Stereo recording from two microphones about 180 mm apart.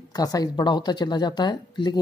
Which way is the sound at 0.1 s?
20° left (ahead or behind).